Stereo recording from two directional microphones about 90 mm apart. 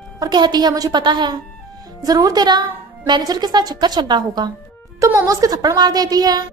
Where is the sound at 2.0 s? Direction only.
45° right (ahead or behind).